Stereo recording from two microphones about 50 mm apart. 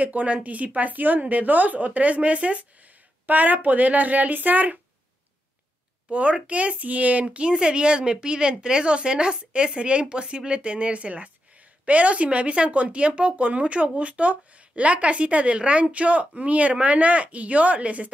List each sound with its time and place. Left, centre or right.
0.0 s a woman's voice: right
6.0 s speech: right
7.2 s speech: centre